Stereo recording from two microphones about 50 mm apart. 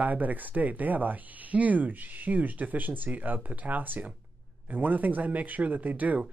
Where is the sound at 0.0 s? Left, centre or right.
Right.